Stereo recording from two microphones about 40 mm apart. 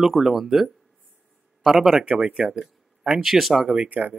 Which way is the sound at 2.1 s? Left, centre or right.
Right.